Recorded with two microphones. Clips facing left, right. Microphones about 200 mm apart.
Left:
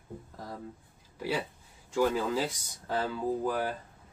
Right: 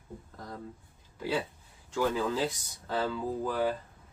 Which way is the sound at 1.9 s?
10° left (ahead or behind).